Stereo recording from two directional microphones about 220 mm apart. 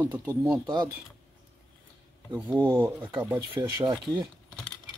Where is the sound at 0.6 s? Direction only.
20° right (ahead or behind).